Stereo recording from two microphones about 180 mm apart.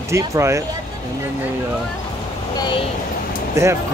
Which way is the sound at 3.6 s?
15° right (ahead or behind).